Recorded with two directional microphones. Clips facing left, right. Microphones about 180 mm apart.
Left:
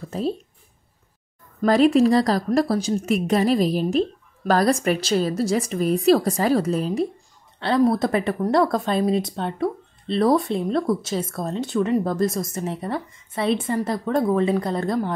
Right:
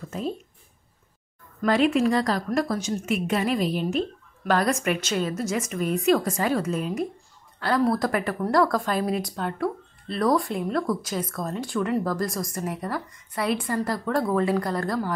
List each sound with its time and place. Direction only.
1.6 s a woman's voice: 35° left (ahead or behind)
7.6 s speech: 25° left (ahead or behind)